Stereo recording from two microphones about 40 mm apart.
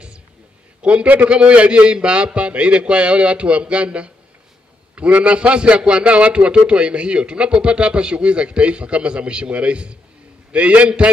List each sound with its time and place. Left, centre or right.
0.8 s a man's voice: right